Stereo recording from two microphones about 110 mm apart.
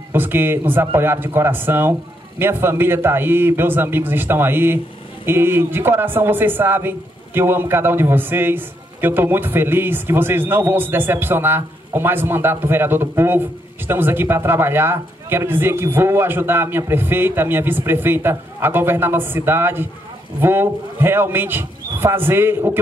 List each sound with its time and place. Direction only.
0.1 s a man's voice: 20° right (ahead or behind)